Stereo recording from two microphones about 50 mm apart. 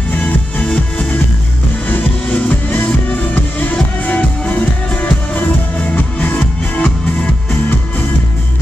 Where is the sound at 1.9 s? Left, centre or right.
Left.